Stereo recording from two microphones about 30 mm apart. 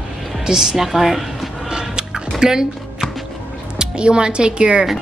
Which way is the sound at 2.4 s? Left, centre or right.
Right.